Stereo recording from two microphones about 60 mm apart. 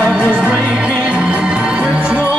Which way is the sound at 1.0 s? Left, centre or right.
Centre.